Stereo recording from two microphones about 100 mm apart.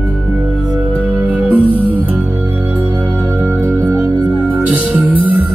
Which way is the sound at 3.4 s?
20° right (ahead or behind).